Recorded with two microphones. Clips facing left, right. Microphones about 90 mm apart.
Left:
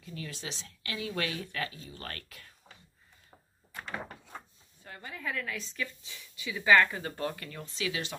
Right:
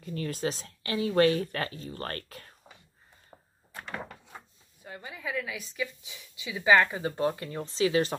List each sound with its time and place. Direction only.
0.0 s a woman's voice: 45° right (ahead or behind)
4.8 s a woman's voice: 10° right (ahead or behind); by 8.2 s 40° right (ahead or behind)